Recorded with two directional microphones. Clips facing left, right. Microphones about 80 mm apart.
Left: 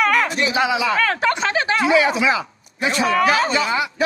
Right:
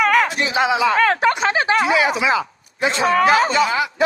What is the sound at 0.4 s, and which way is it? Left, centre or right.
A man's voice, right.